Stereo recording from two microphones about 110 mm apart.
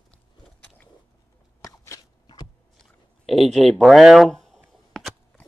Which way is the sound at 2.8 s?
Centre (ahead or behind).